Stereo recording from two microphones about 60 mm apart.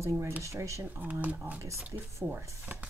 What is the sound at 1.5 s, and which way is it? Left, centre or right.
Speech, right.